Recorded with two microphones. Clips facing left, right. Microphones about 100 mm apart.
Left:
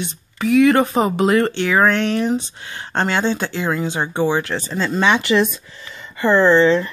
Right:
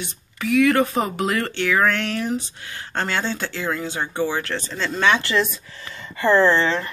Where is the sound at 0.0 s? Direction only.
25° left (ahead or behind).